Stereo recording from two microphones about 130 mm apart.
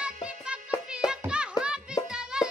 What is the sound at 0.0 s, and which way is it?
Music, 5° right (ahead or behind).